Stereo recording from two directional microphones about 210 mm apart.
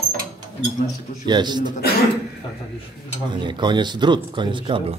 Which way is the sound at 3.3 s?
20° right (ahead or behind).